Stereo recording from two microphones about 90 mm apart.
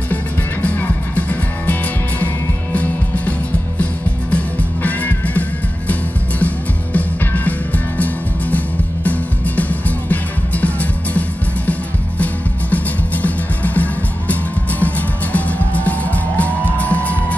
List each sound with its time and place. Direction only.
0.1 s music: 20° left (ahead or behind)
6.4 s music: 15° left (ahead or behind)
12.7 s music: 20° left (ahead or behind)